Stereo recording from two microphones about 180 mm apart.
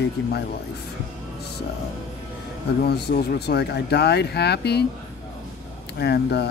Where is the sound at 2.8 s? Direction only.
65° left (ahead or behind).